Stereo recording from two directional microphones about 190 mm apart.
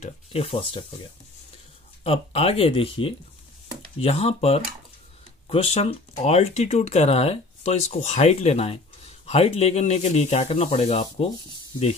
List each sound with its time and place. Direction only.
0.0 s speech: 30° left (ahead or behind)
2.0 s speech: 30° left (ahead or behind)